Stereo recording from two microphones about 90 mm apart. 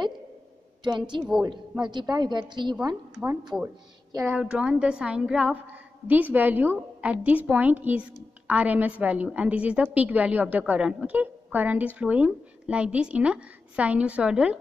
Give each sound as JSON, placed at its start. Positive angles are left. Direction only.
{"t": 0.8, "sound": "a woman's voice", "side_deg": -60}
{"t": 4.3, "sound": "a woman's voice", "side_deg": -15}